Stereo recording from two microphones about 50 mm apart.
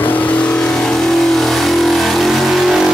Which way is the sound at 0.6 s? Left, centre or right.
Centre.